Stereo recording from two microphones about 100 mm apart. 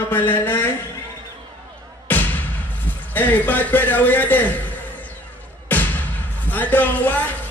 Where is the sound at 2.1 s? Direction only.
20° left (ahead or behind).